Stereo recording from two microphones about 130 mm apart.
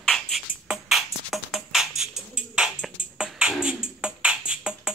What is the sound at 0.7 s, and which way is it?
Music, centre (ahead or behind).